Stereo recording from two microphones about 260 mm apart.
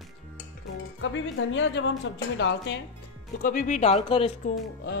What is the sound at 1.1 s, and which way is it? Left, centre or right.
A woman's voice, left.